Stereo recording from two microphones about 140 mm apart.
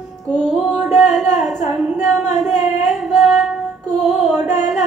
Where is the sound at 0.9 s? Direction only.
55° left (ahead or behind).